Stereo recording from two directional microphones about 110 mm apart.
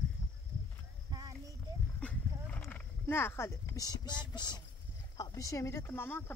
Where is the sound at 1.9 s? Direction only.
10° left (ahead or behind).